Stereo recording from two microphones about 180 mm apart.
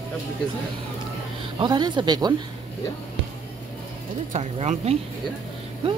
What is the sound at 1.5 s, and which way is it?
Speech, 25° right (ahead or behind).